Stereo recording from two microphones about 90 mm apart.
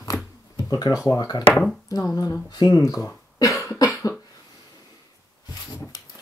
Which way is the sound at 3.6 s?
40° left (ahead or behind).